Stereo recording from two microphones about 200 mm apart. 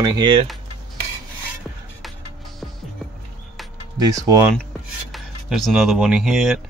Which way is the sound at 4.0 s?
15° right (ahead or behind).